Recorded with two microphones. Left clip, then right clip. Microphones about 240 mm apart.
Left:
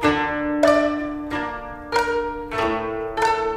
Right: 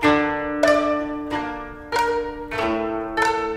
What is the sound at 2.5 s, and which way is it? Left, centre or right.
Music, centre.